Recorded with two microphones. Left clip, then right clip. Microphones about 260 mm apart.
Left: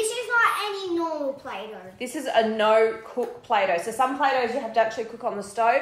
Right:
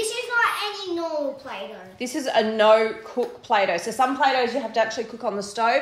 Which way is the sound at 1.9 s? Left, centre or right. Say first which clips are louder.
Right 1 dB; right.